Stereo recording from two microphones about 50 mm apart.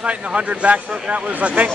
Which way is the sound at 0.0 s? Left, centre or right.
Right.